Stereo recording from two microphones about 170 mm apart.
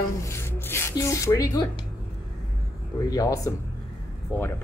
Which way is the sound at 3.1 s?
20° left (ahead or behind).